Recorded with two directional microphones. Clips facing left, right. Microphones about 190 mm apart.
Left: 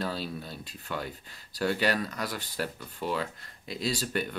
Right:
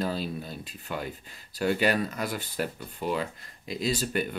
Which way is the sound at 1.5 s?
10° right (ahead or behind).